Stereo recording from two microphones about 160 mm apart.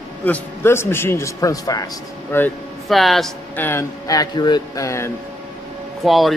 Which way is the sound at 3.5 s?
15° left (ahead or behind).